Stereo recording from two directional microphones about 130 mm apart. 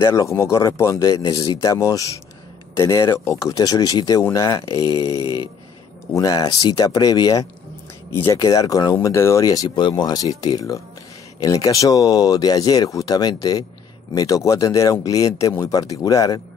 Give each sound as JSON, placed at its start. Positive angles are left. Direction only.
{"t": 0.0, "sound": "speech", "side_deg": 25}